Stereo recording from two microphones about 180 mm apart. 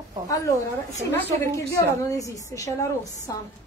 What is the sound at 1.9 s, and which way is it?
A woman's voice, 20° left (ahead or behind).